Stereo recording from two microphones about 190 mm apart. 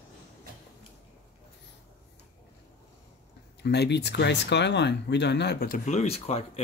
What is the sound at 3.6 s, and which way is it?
Speech, 60° left (ahead or behind).